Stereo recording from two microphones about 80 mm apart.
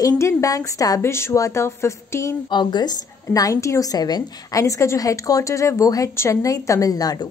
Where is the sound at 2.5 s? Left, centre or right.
Left.